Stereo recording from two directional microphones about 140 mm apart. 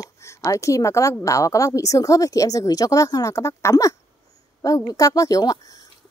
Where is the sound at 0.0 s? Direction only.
20° left (ahead or behind).